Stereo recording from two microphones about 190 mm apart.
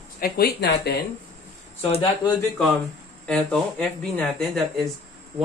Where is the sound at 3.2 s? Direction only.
5° left (ahead or behind).